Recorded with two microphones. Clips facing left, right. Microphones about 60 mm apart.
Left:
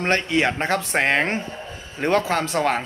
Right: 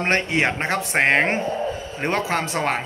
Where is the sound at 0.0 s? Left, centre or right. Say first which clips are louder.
Even; right.